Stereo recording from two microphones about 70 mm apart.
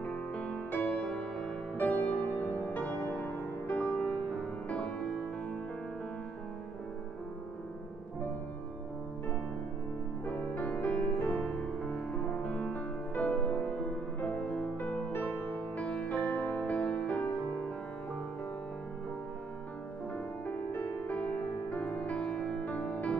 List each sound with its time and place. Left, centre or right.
0.0 s music: centre
1.8 s music: left
10.2 s music: centre
20.4 s music: left